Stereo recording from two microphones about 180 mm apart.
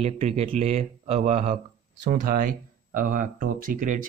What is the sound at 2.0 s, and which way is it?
Speech, 50° right (ahead or behind).